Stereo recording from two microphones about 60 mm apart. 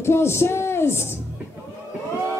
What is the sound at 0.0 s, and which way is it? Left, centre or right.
Speech, left.